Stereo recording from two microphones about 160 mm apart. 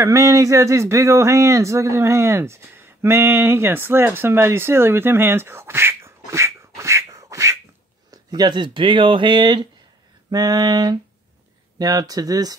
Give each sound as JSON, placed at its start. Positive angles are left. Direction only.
{"t": 0.0, "sound": "speech", "side_deg": -20}